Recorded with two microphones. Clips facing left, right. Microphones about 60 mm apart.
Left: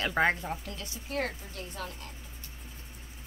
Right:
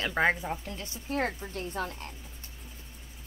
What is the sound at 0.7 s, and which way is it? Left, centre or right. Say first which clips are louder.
A woman's voice: right 3 dB; right.